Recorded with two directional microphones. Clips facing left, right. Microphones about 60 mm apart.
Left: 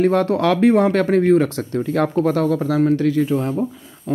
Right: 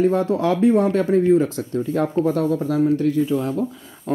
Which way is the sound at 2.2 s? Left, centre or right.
Left.